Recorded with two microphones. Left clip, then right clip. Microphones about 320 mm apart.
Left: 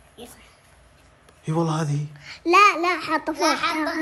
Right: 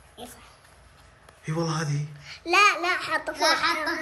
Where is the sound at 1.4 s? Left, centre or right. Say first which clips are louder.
Left 4 dB; centre.